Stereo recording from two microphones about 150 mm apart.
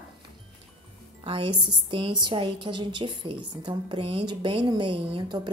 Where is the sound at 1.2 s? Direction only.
35° right (ahead or behind).